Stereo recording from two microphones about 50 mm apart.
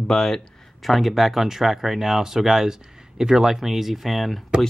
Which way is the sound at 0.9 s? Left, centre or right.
Centre.